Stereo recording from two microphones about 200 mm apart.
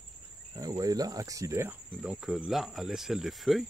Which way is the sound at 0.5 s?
20° right (ahead or behind).